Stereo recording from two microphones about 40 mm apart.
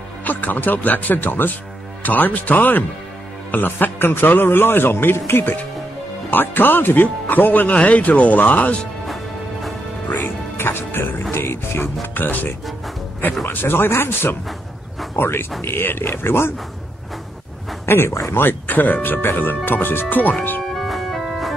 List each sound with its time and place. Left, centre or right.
0.2 s speech: left
3.5 s a man's voice: left
6.3 s speech: left
7.6 s speech: left
9.0 s music: centre
10.0 s music: left
11.3 s music: left
12.2 s speech: left
13.5 s speech: left
17.8 s a man's voice: left
18.3 s a man's voice: left
20.6 s music: centre